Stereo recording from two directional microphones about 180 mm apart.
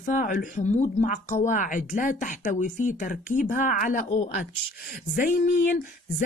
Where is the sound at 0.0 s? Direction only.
50° left (ahead or behind).